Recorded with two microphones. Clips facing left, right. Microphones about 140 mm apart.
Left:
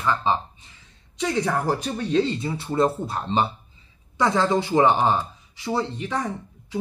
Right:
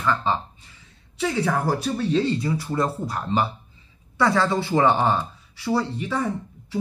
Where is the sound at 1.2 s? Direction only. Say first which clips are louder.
Even; 10° right (ahead or behind).